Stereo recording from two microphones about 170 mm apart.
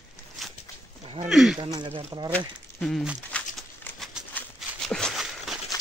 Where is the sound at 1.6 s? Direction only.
30° right (ahead or behind).